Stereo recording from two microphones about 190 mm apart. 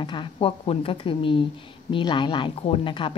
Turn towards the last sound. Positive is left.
turn(degrees=25)  # may be behind; listen again after turning